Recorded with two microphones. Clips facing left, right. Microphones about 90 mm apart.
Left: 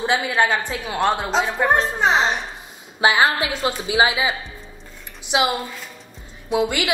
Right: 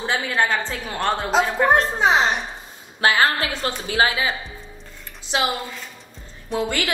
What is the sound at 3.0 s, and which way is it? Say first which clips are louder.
A woman's voice: left 1 dB; 15° left (ahead or behind).